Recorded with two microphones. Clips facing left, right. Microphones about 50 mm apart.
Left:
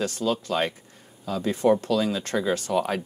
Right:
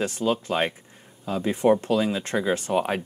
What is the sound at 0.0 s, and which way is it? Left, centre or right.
Speech, right.